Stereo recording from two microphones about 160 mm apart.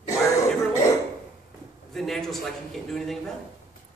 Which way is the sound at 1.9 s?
Centre (ahead or behind).